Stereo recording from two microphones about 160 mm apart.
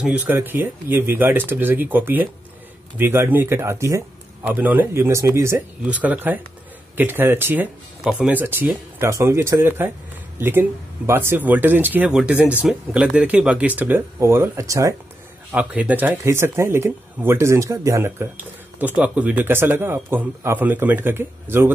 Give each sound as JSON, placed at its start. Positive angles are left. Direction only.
{"t": 0.0, "sound": "speech", "side_deg": -10}
{"t": 15.5, "sound": "speech", "side_deg": -10}